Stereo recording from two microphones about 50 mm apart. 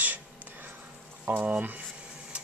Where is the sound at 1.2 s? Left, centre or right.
Right.